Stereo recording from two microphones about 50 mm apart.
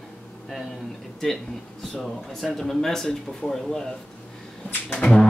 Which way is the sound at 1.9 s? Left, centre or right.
Centre.